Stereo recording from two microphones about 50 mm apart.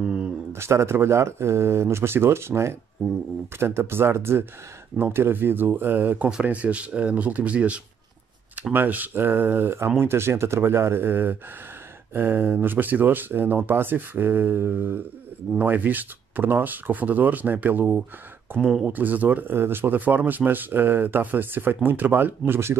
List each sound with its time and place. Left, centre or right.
0.0 s a sound: centre
0.5 s speech: right
6.4 s speech: right
8.7 s speech: right
15.5 s speech: right
18.9 s speech: right
19.5 s speech: right